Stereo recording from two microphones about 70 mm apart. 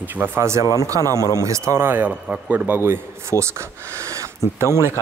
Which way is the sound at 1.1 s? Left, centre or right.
Left.